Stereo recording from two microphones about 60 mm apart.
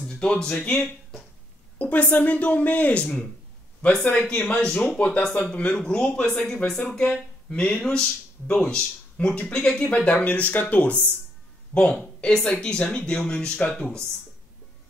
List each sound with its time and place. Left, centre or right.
0.0 s speech: centre
1.8 s speech: left; by 14.0 s centre